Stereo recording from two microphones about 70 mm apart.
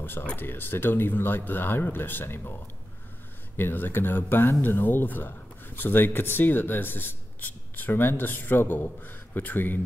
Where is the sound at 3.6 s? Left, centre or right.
Left.